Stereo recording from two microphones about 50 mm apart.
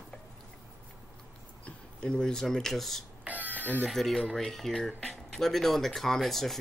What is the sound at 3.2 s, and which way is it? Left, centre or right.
Cough, right.